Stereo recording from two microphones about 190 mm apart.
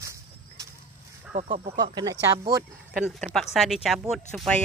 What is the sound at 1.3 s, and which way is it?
Speech, 35° right (ahead or behind).